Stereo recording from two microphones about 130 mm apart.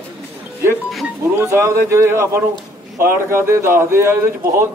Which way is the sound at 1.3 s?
20° right (ahead or behind).